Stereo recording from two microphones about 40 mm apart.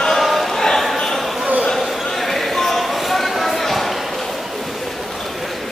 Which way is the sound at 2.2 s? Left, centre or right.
Centre.